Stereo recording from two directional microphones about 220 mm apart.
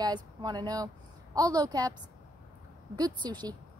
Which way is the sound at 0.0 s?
20° right (ahead or behind).